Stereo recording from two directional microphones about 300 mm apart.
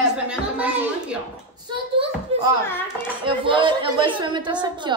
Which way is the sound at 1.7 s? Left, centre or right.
Centre.